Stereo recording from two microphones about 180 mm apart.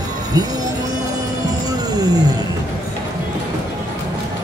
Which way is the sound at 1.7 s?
20° right (ahead or behind).